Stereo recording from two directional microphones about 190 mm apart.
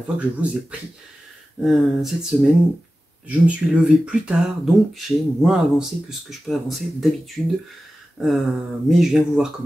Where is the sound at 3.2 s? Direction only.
5° right (ahead or behind).